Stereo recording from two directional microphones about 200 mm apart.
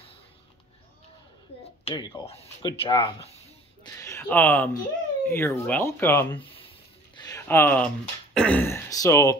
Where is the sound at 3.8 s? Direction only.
10° left (ahead or behind).